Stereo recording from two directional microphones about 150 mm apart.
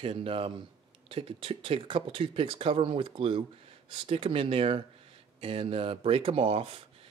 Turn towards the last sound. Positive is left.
turn(degrees=-40)  # may be behind; listen again after turning